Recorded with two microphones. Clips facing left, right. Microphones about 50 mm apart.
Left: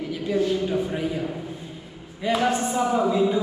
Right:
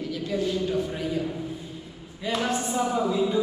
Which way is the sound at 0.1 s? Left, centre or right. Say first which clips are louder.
Left 5 dB; centre.